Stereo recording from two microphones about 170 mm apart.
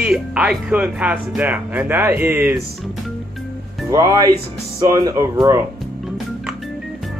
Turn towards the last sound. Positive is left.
turn(degrees=-20)  # may be behind; listen again after turning